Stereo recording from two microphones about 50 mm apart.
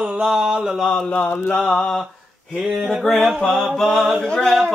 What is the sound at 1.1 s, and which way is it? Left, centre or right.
Speech, left.